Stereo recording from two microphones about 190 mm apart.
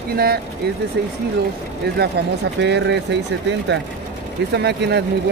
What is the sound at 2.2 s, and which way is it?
Speech, 60° right (ahead or behind).